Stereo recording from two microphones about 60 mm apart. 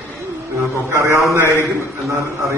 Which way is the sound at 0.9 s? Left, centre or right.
Right.